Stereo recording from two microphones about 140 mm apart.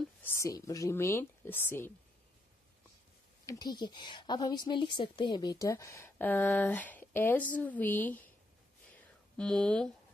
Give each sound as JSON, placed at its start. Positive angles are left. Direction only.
{"t": 0.2, "sound": "speech", "side_deg": 20}
{"t": 3.4, "sound": "speech", "side_deg": 30}
{"t": 8.9, "sound": "a sound", "side_deg": 5}